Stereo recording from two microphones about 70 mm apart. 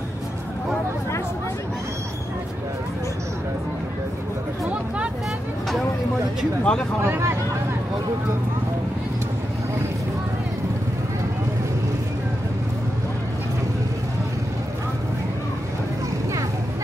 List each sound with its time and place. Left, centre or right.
4.6 s a sound: centre
6.6 s speech: centre
7.0 s speech: right